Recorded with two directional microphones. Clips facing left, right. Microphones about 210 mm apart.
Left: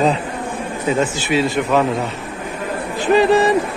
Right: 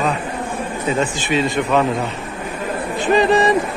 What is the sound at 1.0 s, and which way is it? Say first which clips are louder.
Speech: left 1 dB; 5° left (ahead or behind).